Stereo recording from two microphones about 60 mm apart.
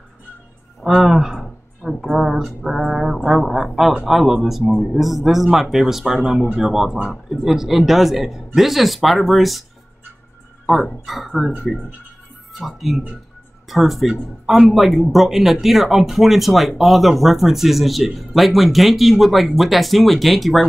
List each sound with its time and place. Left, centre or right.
0.8 s speech: centre
4.6 s a man's voice: centre
4.9 s speech: centre
11.1 s speech: centre
12.5 s speech: centre